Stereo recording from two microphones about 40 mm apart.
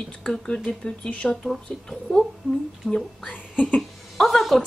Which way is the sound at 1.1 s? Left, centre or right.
Left.